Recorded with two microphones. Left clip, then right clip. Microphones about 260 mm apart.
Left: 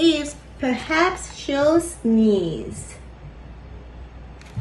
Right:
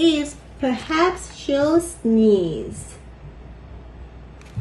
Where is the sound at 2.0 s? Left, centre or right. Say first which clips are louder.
Right 3 dB; left.